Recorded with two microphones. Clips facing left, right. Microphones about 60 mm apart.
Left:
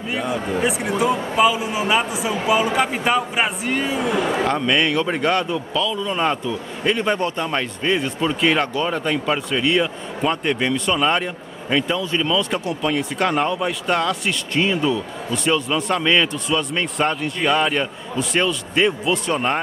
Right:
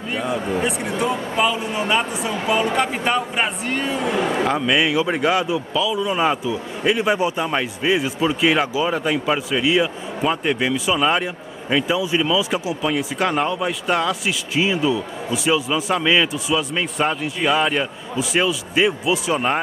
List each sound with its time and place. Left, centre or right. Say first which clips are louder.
0.1 s speech: right 1 dB; centre